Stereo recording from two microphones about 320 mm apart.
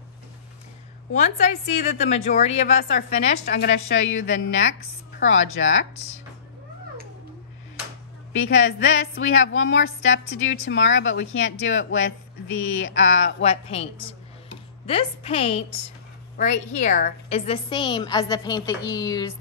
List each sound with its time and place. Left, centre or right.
1.1 s a woman's voice: left
8.3 s a woman's voice: left
13.4 s a woman's voice: centre
14.9 s a woman's voice: centre